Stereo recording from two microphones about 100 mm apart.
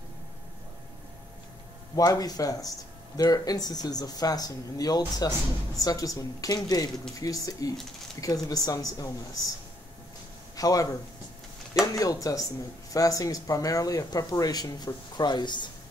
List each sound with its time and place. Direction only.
2.0 s speech: 40° left (ahead or behind)
10.5 s speech: 35° left (ahead or behind)